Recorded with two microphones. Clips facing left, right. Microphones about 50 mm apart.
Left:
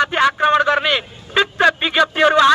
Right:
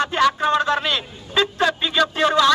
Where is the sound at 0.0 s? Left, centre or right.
Left.